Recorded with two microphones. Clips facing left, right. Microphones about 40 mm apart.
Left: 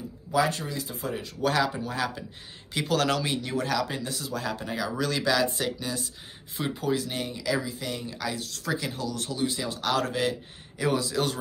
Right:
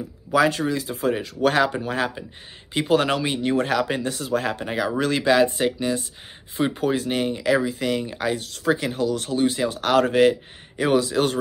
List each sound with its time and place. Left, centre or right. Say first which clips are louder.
0.3 s speech: right 6 dB; right
1.5 s speech: right 3 dB; right
2.7 s speech: right 5 dB; right
3.4 s speech: right 7 dB; right
8.1 s speech: right 7 dB; right